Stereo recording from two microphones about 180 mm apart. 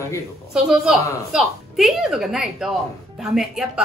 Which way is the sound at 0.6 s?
Centre (ahead or behind).